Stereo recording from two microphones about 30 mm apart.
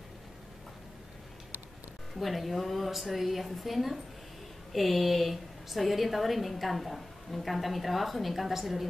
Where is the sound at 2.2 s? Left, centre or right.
Centre.